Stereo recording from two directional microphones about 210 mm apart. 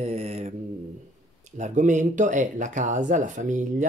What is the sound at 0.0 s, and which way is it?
Mantra, 30° right (ahead or behind).